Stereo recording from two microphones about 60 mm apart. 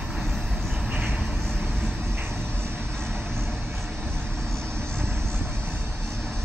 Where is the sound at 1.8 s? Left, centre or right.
Right.